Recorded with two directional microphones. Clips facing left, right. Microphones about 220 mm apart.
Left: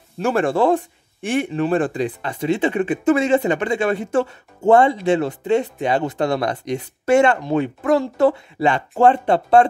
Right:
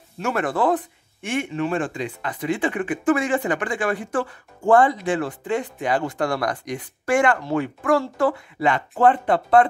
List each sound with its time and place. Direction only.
0.2 s speech: 30° left (ahead or behind)